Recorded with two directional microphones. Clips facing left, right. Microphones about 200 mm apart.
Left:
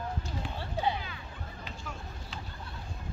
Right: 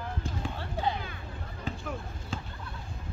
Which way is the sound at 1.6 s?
50° right (ahead or behind).